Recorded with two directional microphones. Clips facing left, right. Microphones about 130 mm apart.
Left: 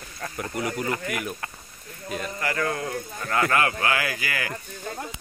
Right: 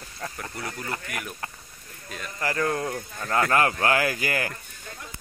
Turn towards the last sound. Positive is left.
turn(degrees=-45)  # may be behind; listen again after turning